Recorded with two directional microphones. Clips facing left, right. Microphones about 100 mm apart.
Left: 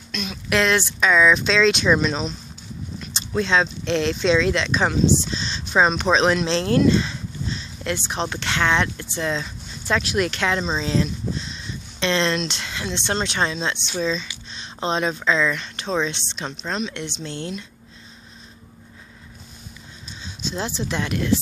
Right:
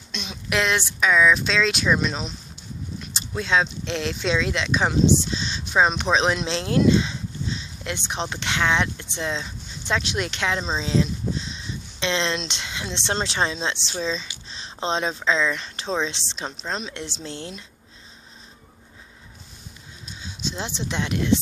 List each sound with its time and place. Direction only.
0.1 s a sound: 25° right (ahead or behind)
0.5 s speech: 15° right (ahead or behind)
3.0 s a sound: 5° right (ahead or behind)
3.6 s speech: 15° right (ahead or behind)
16.8 s a woman's voice: 35° right (ahead or behind)
20.2 s speech: 15° right (ahead or behind)